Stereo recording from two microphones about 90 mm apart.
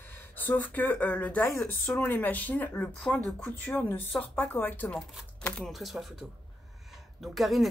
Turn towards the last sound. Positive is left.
turn(degrees=0)  # may be behind; listen again after turning